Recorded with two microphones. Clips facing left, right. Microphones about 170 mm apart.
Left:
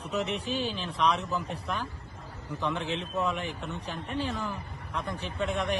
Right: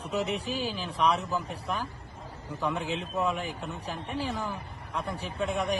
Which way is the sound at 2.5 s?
10° right (ahead or behind).